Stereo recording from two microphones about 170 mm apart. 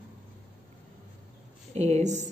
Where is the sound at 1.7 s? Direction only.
40° right (ahead or behind).